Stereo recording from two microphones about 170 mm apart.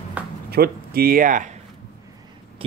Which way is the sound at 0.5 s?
65° right (ahead or behind).